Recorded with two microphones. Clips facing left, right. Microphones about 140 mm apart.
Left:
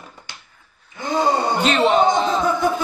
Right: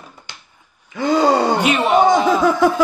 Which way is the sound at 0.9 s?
85° right.